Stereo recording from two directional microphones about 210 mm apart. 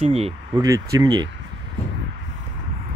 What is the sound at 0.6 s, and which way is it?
Speech, 15° right (ahead or behind).